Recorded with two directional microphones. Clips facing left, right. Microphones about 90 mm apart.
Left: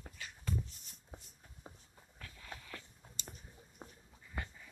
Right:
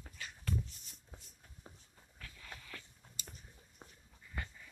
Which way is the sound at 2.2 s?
20° left (ahead or behind).